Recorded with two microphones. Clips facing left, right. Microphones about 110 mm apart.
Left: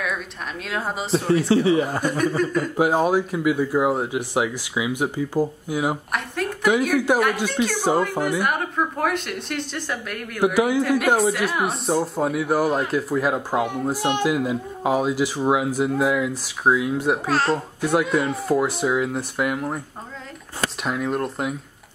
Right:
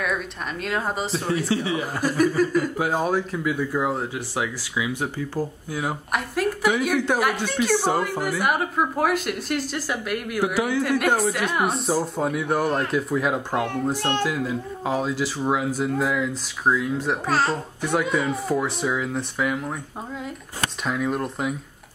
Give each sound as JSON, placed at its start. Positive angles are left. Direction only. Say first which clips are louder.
{"t": 0.7, "sound": "speech", "louder": "left 1 dB", "side_deg": 0}
{"t": 1.5, "sound": "speech", "louder": "left 7 dB", "side_deg": 35}
{"t": 1.9, "sound": "speech", "louder": "right 1 dB", "side_deg": 0}
{"t": 2.8, "sound": "a child's voice", "louder": "left 4 dB", "side_deg": 15}
{"t": 6.1, "sound": "a woman's voice", "louder": "right 2 dB", "side_deg": -5}
{"t": 10.4, "sound": "a child's voice", "louder": "left 5 dB", "side_deg": 15}
{"t": 10.8, "sound": "a child's voice", "louder": "left 2 dB", "side_deg": 0}
{"t": 20.8, "sound": "speech", "louder": "even", "side_deg": 0}